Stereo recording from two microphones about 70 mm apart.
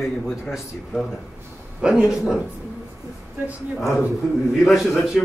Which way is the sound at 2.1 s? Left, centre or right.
Centre.